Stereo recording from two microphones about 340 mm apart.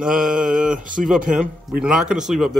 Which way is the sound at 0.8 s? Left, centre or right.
Right.